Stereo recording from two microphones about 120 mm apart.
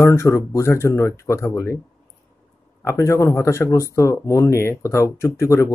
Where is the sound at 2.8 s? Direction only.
25° left (ahead or behind).